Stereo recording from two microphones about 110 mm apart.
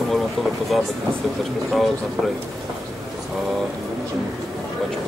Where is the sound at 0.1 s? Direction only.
Centre (ahead or behind).